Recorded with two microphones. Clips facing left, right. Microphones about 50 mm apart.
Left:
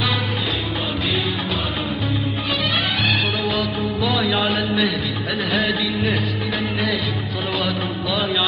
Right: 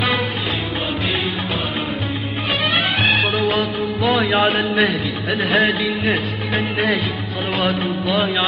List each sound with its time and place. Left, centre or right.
2.7 s music of bollywood: right
5.4 s speech: right